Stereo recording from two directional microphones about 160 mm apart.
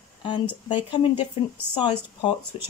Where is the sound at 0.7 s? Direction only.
30° left (ahead or behind).